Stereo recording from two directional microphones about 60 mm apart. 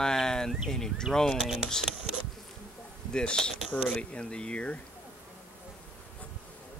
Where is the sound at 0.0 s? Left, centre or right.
Centre.